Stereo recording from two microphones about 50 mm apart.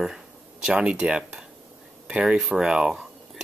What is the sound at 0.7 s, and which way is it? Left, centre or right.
Speech, right.